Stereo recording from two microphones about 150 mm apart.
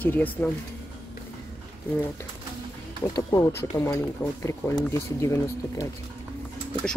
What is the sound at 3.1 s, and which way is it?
Speech, 20° left (ahead or behind).